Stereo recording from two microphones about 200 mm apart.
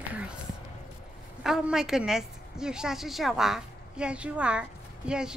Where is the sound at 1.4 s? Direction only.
Centre (ahead or behind).